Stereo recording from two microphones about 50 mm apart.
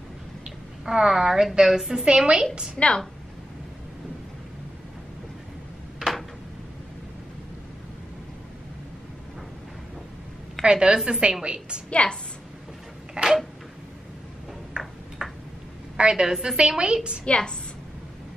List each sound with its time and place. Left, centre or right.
0.8 s a woman's voice: centre
2.8 s a woman's voice: centre
10.6 s a woman's voice: centre
11.9 s a woman's voice: left
13.2 s a sound: centre
14.8 s tick-tock: centre
16.0 s a woman's voice: centre
17.2 s a woman's voice: left